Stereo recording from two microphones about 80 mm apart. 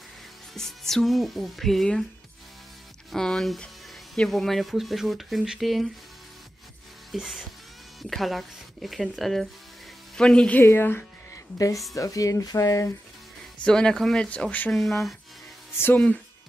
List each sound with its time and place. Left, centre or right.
0.6 s speech: centre
3.1 s a sound: centre
4.3 s speech: centre
7.1 s music: centre
8.0 s speech: centre
10.6 s speech: left
11.5 s speech: left
13.7 s speech: centre
14.7 s speech: centre
15.7 s speech: left